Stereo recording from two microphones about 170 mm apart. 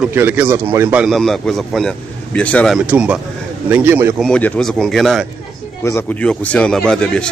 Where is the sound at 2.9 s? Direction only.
5° right (ahead or behind).